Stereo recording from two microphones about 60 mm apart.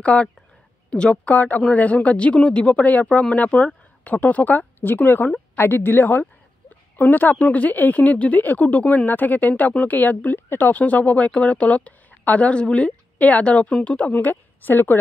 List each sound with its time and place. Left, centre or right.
0.0 s a woman's voice: centre
1.2 s a woman's voice: left